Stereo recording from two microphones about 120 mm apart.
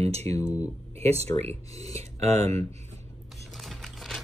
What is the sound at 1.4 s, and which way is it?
Speech, 60° right (ahead or behind).